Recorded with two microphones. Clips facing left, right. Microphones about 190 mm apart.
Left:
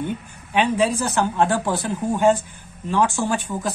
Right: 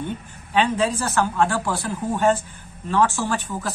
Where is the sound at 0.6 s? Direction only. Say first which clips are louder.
Left 1 dB; 15° left (ahead or behind).